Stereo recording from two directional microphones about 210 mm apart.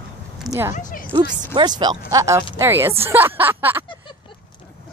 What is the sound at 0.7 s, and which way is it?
Speech, 40° left (ahead or behind).